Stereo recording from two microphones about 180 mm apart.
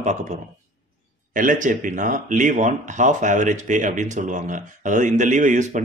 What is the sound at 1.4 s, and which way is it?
Speech, 45° right (ahead or behind).